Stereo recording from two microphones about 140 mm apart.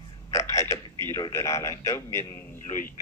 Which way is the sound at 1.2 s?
20° left (ahead or behind).